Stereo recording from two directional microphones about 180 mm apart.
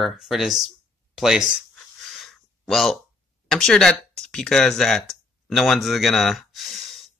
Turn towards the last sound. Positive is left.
turn(degrees=0)  # may be behind; listen again after turning